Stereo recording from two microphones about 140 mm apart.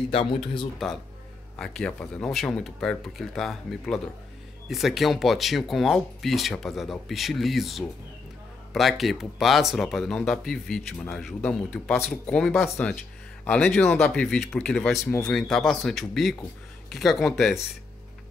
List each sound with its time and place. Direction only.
0.1 s speech: 40° left (ahead or behind)
1.6 s speech: 5° left (ahead or behind)
11.4 s speech: 15° left (ahead or behind)